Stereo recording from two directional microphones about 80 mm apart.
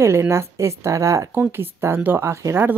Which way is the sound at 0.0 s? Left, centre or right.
Right.